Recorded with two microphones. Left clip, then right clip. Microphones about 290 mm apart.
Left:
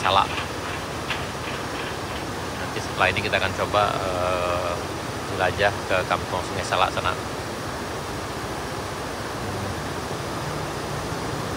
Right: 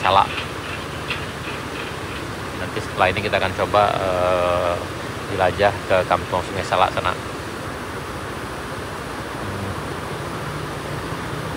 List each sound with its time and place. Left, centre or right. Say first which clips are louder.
0.0 s speech: right 4 dB; centre
3.0 s speech: right 3 dB; centre